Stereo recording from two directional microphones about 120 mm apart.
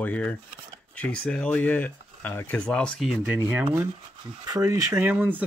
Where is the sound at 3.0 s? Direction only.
5° right (ahead or behind).